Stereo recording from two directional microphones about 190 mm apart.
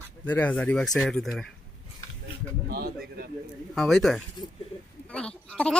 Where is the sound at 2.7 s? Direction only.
55° right (ahead or behind).